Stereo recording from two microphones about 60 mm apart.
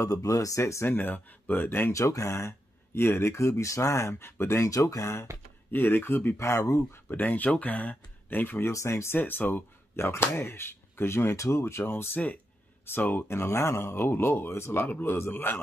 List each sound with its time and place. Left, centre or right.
0.0 s speech: left
0.8 s speech: left
1.9 s speech: left
4.6 s speech: left
5.7 s speech: left
6.3 s speech: left
6.9 s speech: left
9.2 s speech: left
11.3 s speech: left
14.9 s speech: left